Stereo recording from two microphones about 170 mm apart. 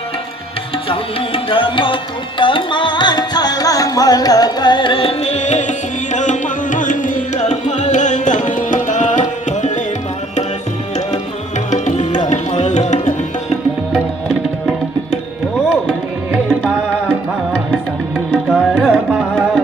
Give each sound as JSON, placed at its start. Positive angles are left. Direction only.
{"t": 0.8, "sound": "tabla", "side_deg": 30}
{"t": 6.1, "sound": "music", "side_deg": 50}
{"t": 11.7, "sound": "music", "side_deg": 45}
{"t": 18.3, "sound": "tabla", "side_deg": -5}